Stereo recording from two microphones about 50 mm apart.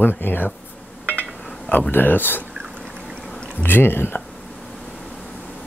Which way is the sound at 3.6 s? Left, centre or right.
Left.